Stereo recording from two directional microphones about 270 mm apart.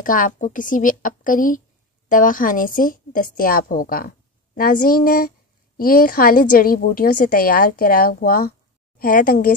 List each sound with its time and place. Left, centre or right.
0.0 s a woman's voice: left